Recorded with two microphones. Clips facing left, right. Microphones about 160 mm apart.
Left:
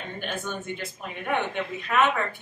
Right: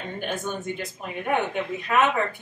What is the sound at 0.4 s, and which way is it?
Speech, 40° right (ahead or behind).